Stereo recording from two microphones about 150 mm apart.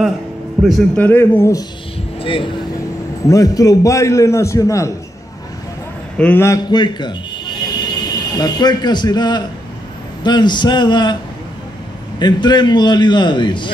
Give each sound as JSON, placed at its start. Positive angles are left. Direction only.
{"t": 0.6, "sound": "a man's voice", "side_deg": 0}
{"t": 0.9, "sound": "a man's voice", "side_deg": 10}
{"t": 2.2, "sound": "speech", "side_deg": 35}
{"t": 3.3, "sound": "a man's voice", "side_deg": 25}
{"t": 6.1, "sound": "a man's voice", "side_deg": 10}
{"t": 12.2, "sound": "a man's voice", "side_deg": 30}